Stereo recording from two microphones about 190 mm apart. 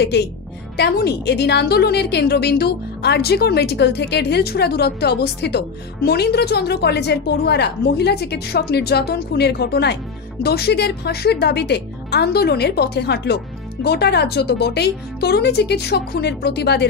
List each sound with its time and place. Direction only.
0.0 s a woman's voice: 60° left (ahead or behind)